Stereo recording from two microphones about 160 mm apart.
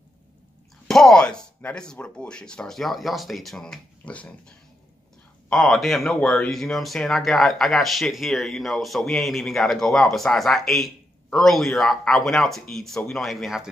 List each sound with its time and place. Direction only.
0.8 s speech: 5° left (ahead or behind)